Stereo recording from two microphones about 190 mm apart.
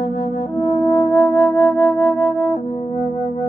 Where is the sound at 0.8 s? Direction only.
10° left (ahead or behind).